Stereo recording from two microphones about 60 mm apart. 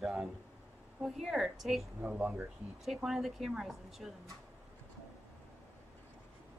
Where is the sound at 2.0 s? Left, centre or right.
Right.